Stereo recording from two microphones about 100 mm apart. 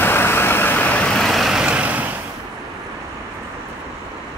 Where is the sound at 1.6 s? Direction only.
10° right (ahead or behind).